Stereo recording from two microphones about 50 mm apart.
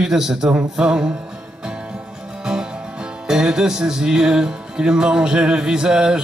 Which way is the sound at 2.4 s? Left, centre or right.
Centre.